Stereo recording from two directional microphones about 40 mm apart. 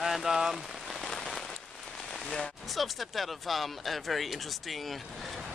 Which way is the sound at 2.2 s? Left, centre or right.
Left.